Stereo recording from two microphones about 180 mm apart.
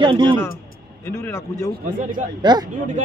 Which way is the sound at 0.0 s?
25° right (ahead or behind).